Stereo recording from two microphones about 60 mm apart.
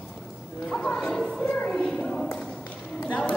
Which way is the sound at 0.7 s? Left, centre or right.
Centre.